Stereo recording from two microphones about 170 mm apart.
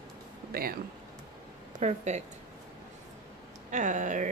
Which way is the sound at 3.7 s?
45° right (ahead or behind).